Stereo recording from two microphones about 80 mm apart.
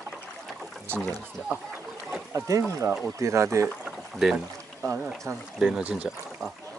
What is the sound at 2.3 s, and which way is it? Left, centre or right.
Speech, right.